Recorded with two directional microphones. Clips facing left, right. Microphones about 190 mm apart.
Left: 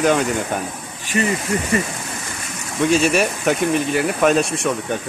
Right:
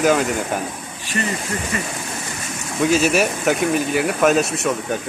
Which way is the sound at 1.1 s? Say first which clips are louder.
Left 4 dB; 15° left (ahead or behind).